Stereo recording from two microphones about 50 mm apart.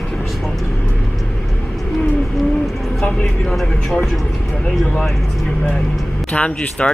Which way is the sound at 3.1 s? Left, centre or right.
Left.